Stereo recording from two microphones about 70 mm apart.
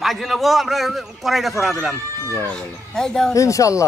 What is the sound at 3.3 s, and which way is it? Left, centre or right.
Speech, left.